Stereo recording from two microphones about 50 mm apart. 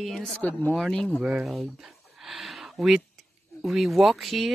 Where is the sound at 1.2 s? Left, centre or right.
Centre.